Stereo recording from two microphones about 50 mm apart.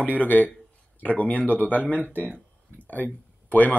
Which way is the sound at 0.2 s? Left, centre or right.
Left.